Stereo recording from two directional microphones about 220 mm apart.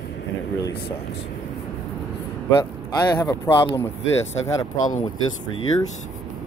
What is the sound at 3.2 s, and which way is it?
Speech, 20° left (ahead or behind).